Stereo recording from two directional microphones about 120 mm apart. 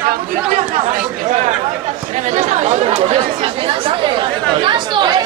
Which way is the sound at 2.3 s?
70° right (ahead or behind).